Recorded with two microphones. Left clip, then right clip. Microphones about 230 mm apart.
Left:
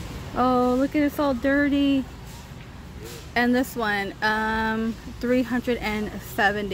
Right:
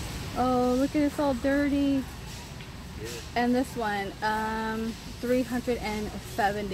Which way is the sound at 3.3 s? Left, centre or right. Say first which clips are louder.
Left 4 dB; centre.